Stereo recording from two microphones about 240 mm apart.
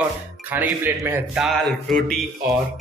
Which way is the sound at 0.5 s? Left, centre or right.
Centre.